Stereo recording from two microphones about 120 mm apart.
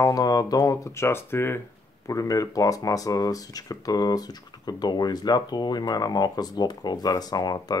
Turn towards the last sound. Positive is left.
turn(degrees=35)  # may be behind; listen again after turning